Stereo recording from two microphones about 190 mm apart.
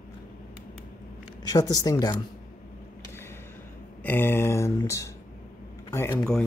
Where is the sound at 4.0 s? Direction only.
10° left (ahead or behind).